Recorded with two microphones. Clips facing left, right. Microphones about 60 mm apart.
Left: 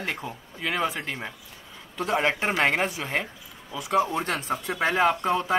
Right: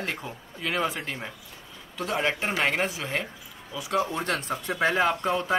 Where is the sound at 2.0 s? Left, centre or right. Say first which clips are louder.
Left 3 dB; left.